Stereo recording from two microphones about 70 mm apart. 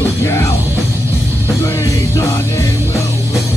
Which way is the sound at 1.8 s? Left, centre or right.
Left.